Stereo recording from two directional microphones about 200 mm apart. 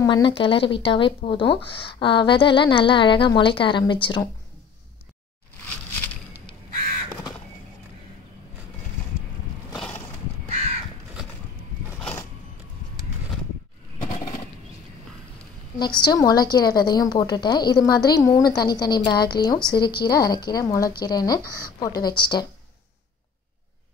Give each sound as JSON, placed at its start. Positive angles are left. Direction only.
{"t": 0.0, "sound": "speech", "side_deg": 25}
{"t": 15.8, "sound": "speech", "side_deg": 20}